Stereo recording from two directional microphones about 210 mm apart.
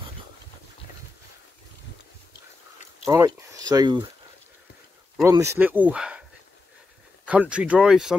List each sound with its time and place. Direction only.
3.1 s speech: 15° right (ahead or behind)
5.1 s speech: 15° right (ahead or behind)
7.2 s speech: 5° right (ahead or behind)